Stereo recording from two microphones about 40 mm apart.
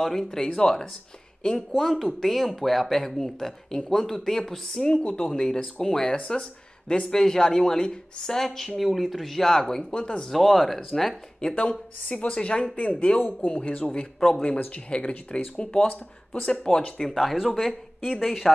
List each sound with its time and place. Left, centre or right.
0.0 s speech: centre
1.8 s speech: centre
4.8 s speech: left
8.4 s speech: centre
10.3 s speech: centre
11.4 s speech: left
14.9 s speech: left
17.1 s speech: centre